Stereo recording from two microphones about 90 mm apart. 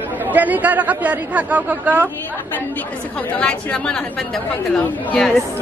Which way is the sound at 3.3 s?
15° left (ahead or behind).